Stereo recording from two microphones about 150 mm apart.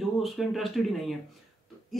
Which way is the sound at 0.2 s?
Centre (ahead or behind).